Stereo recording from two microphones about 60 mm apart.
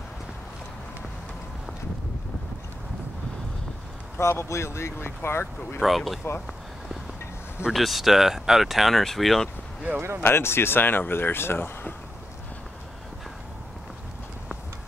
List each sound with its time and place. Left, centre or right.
4.2 s speech: left
5.8 s speech: centre
7.7 s speech: centre
9.9 s speech: right
10.2 s speech: left